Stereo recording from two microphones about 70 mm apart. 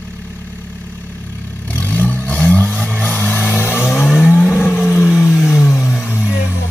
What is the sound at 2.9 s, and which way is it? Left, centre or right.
Music, left.